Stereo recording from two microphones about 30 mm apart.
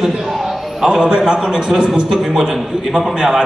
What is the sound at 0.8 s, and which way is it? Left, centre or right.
A man's voice, right.